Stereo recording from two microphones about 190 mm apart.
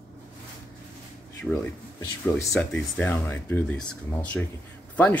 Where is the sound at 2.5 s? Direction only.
5° left (ahead or behind).